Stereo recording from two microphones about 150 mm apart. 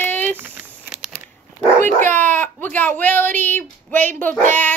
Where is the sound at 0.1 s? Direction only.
10° left (ahead or behind).